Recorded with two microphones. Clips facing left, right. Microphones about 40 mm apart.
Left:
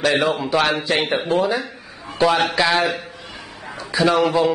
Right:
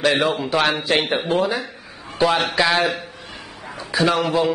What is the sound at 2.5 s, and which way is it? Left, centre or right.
Speech, centre.